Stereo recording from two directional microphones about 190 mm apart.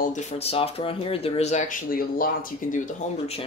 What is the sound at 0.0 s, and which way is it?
Speech, 40° left (ahead or behind).